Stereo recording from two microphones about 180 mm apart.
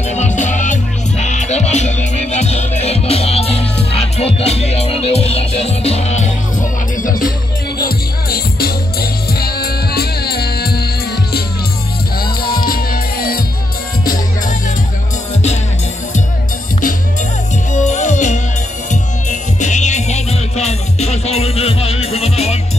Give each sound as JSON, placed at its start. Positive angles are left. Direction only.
{"t": 0.1, "sound": "music", "side_deg": 40}
{"t": 12.6, "sound": "music", "side_deg": 55}
{"t": 17.7, "sound": "music", "side_deg": 40}
{"t": 19.6, "sound": "music", "side_deg": 40}